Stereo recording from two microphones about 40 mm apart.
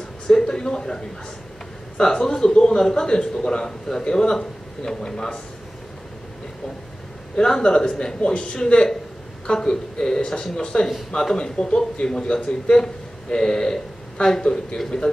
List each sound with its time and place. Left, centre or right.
0.3 s a man's voice: centre
7.3 s a man's voice: centre